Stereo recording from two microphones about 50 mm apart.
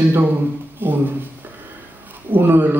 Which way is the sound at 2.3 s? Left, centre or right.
Right.